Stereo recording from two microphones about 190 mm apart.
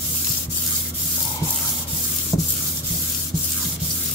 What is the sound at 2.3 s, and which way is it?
Rub, 15° left (ahead or behind).